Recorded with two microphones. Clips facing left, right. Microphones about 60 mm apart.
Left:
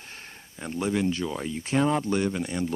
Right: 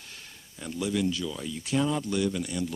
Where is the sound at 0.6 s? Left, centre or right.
Left.